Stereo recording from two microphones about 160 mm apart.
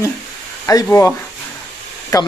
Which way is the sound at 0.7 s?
20° left (ahead or behind).